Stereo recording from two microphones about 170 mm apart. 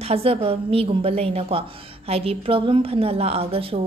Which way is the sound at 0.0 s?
35° right (ahead or behind).